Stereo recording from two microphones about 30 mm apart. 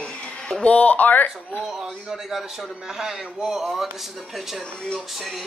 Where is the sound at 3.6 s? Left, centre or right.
Centre.